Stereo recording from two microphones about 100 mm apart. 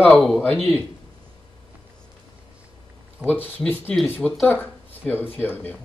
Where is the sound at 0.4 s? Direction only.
20° left (ahead or behind).